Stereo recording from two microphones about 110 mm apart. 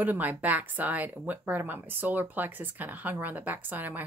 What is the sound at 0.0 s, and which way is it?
Speech, 15° right (ahead or behind).